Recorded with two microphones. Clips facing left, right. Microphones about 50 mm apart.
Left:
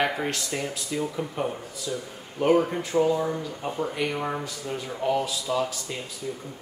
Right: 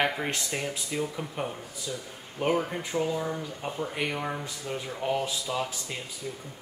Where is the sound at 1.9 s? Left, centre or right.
Centre.